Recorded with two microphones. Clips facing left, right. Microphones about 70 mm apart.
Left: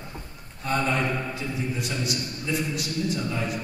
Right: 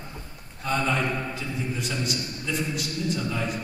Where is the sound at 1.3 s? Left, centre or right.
Centre.